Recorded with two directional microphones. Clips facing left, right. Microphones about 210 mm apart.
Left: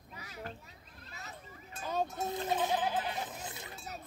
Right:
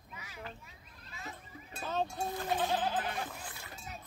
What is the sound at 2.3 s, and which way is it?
Speech, 20° left (ahead or behind).